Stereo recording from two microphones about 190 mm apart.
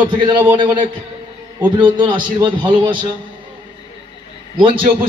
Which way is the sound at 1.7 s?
25° right (ahead or behind).